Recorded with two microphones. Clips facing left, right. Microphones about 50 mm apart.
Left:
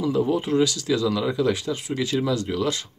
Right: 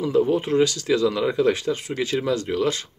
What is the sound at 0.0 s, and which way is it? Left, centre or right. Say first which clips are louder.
Speech: right 2 dB; right.